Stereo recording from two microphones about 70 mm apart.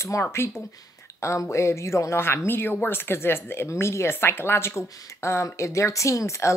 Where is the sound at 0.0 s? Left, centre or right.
Left.